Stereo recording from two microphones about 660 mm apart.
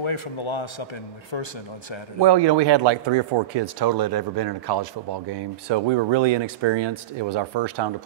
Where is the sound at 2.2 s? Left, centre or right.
Right.